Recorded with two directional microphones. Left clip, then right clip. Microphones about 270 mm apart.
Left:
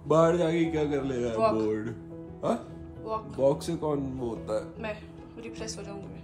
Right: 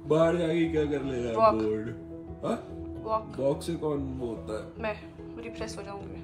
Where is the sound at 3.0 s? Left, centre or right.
Centre.